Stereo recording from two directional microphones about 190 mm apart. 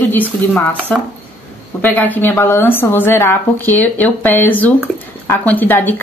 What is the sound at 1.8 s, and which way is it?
Speech, 10° left (ahead or behind).